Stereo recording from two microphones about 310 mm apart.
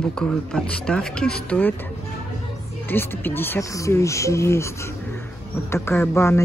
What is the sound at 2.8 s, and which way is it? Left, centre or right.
Speech, centre.